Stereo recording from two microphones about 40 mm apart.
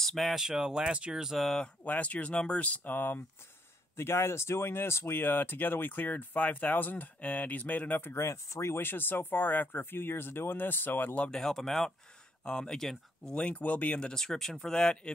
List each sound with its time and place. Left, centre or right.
0.0 s speech: centre
0.4 s speech: centre
1.9 s speech: left
2.6 s speech: left
4.0 s speech: left
7.2 s speech: left
8.0 s speech: left
9.7 s speech: left
11.2 s speech: centre
13.3 s speech: left
14.1 s speech: centre